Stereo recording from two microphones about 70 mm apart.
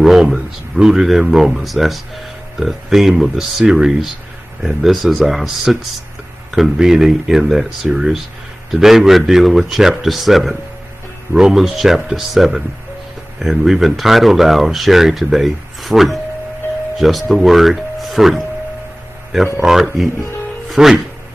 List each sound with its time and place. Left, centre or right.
0.0 s speech: centre
19.6 s speech: centre